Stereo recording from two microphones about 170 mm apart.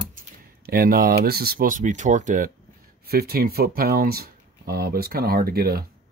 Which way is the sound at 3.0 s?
65° right (ahead or behind).